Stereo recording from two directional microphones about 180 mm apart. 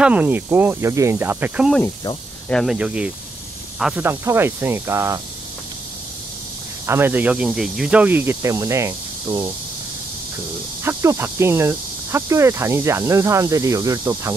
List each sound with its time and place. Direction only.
0.0 s speech: 10° right (ahead or behind)
6.9 s speech: 10° right (ahead or behind)
10.8 s speech: 15° right (ahead or behind)